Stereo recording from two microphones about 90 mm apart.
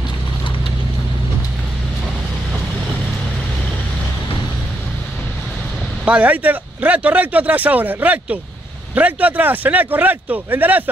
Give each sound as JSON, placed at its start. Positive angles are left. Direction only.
{"t": 6.0, "sound": "speech", "side_deg": -15}